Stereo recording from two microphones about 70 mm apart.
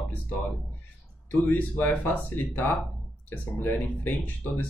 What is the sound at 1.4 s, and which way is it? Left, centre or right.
Speech, left.